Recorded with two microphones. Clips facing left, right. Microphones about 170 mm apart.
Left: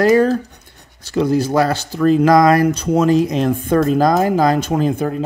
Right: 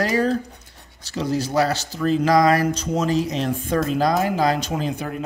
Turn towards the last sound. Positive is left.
turn(degrees=50)  # may be behind; listen again after turning